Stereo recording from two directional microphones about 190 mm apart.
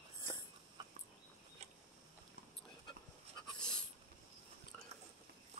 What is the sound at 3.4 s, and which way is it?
Dog, 5° left (ahead or behind).